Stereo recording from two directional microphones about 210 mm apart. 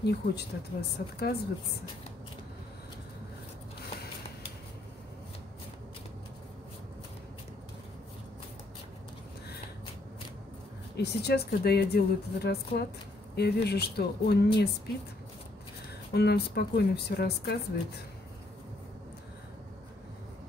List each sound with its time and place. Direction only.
0.0 s speech: 50° left (ahead or behind)
11.0 s speech: 50° left (ahead or behind)
16.1 s speech: 50° left (ahead or behind)